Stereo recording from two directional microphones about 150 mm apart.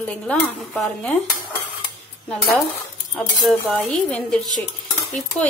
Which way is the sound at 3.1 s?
5° left (ahead or behind).